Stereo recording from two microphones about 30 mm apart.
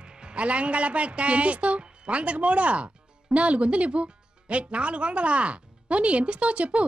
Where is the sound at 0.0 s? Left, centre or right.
Right.